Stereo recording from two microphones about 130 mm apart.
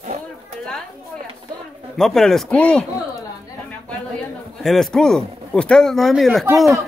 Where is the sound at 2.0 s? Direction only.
5° left (ahead or behind).